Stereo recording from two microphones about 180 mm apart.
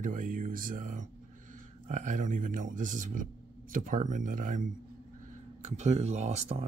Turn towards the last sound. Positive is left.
turn(degrees=-40)  # may be behind; listen again after turning